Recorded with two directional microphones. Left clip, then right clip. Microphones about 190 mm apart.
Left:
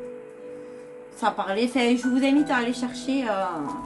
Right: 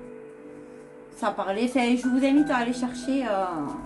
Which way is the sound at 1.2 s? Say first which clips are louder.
Left 2 dB; 5° left (ahead or behind).